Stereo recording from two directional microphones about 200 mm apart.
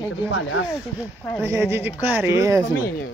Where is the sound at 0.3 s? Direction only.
70° left (ahead or behind).